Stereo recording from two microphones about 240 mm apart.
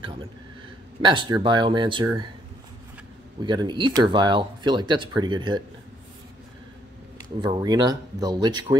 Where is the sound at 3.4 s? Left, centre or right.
Centre.